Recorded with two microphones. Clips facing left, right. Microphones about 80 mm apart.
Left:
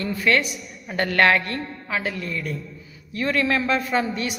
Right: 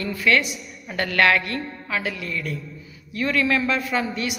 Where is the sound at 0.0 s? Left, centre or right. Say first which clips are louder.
Even; left.